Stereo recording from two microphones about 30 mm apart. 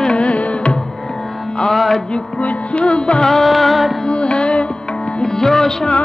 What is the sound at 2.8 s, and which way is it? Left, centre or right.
Music, left.